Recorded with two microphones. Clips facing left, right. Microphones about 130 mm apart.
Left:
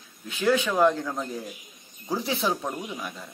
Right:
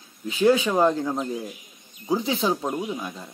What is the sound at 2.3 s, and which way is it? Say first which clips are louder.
Speech: right 3 dB; 20° right (ahead or behind).